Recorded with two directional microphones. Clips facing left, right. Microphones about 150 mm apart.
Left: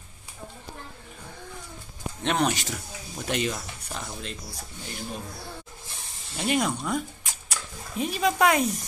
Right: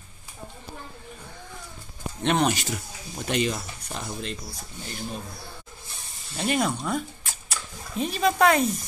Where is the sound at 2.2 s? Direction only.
Centre (ahead or behind).